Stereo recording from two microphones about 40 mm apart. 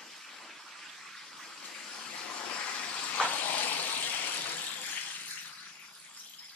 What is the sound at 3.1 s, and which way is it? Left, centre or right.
Vehicle, left.